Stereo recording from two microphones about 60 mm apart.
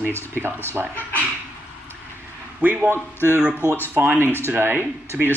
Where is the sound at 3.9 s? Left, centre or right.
Right.